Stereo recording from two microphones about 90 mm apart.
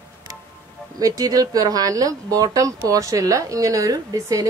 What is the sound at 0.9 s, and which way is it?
Speech, 45° right (ahead or behind).